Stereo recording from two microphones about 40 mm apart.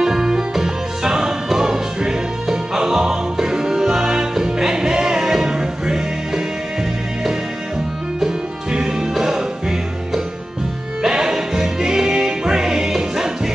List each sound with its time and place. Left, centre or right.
0.0 s music: centre
8.7 s music: centre